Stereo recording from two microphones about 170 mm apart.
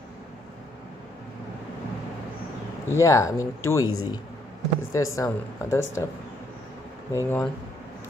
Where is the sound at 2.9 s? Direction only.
15° left (ahead or behind).